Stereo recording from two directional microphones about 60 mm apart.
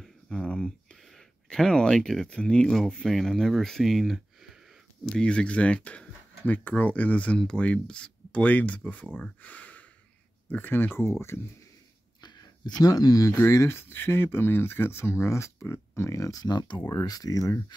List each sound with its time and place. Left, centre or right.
0.0 s a sound: centre
2.2 s speech: centre
5.0 s speech: centre
9.4 s a sound: left
10.5 s speech: left
12.8 s speech: left
13.4 s speech: left
17.0 s speech: left